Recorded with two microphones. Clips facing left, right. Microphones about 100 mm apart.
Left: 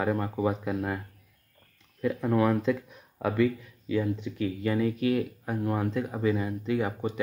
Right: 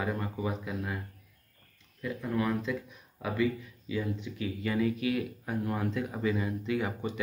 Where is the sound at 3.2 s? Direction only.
60° left (ahead or behind).